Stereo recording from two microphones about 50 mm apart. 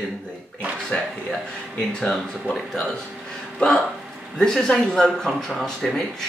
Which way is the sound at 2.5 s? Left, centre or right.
Centre.